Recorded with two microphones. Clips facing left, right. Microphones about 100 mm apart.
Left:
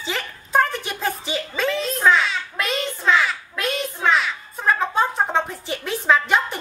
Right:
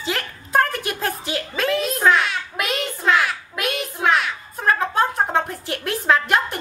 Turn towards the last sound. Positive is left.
turn(degrees=0)  # may be behind; listen again after turning